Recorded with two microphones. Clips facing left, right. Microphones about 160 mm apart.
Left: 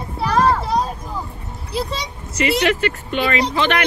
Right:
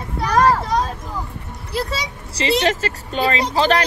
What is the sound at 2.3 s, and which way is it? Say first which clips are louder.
Speech: left 1 dB; 35° right (ahead or behind).